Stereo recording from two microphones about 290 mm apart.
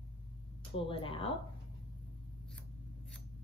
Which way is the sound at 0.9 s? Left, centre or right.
Centre.